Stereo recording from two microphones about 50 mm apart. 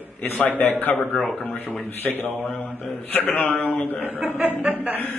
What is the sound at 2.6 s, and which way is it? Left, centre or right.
Speech, left.